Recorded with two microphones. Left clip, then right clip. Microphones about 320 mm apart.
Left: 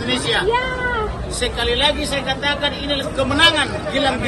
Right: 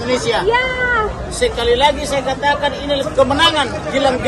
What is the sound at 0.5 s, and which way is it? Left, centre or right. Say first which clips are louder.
Speech: right 4 dB; right.